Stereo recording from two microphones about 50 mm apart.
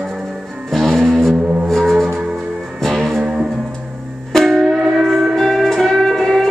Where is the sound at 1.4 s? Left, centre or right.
Right.